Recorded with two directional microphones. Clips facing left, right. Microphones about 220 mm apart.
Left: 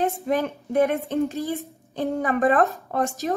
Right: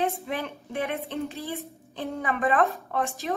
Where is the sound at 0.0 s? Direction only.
45° left (ahead or behind).